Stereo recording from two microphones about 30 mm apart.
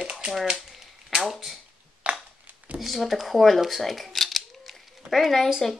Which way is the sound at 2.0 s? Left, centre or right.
Right.